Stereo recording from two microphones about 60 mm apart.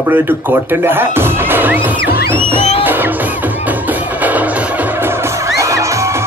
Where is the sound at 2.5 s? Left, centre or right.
Right.